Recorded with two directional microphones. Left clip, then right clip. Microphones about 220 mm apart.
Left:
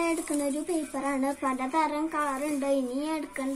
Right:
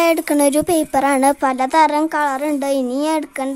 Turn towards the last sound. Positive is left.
turn(degrees=-50)  # may be behind; listen again after turning